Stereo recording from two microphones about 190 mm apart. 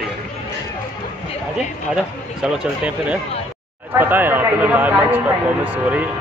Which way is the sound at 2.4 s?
5° right (ahead or behind).